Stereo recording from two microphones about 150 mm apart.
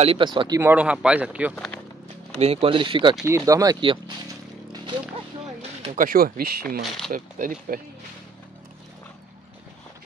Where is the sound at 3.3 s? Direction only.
20° right (ahead or behind).